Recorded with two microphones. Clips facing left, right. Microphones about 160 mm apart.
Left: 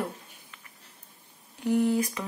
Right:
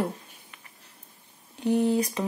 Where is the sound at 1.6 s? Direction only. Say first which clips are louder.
Right 1 dB; 25° right (ahead or behind).